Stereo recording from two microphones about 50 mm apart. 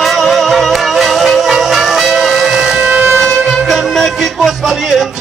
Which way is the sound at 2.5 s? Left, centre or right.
Centre.